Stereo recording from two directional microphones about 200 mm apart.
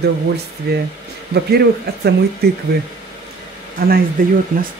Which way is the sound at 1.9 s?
50° right (ahead or behind).